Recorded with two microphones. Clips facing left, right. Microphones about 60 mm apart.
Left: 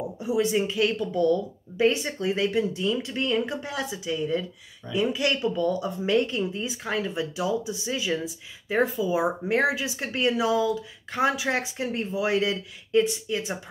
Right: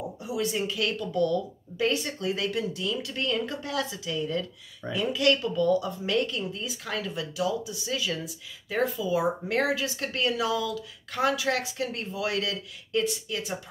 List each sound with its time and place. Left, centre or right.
0.2 s a woman's voice: left